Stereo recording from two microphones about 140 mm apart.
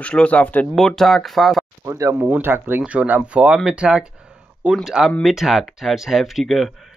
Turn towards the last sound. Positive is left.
turn(degrees=0)  # may be behind; listen again after turning